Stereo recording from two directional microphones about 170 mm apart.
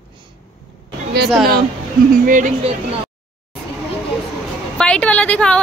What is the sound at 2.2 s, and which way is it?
Speech, 50° right (ahead or behind).